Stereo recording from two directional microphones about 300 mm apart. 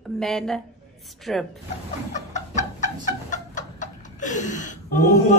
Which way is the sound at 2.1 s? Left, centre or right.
Left.